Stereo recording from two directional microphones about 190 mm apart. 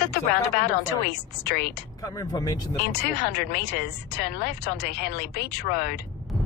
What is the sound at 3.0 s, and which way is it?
Speech, 55° left (ahead or behind).